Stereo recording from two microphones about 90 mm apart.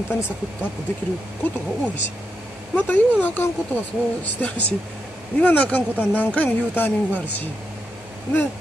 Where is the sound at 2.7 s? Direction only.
20° left (ahead or behind).